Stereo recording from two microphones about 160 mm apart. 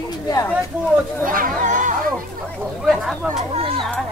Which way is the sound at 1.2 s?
60° right (ahead or behind).